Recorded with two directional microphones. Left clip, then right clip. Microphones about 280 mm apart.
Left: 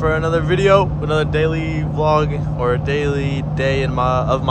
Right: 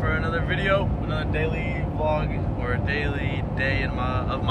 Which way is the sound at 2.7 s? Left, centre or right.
Left.